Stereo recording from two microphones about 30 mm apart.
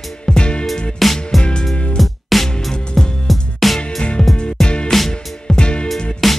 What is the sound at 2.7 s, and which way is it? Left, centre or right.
Music, centre.